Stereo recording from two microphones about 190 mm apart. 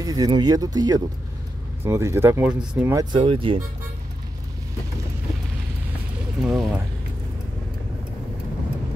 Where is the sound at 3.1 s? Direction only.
30° right (ahead or behind).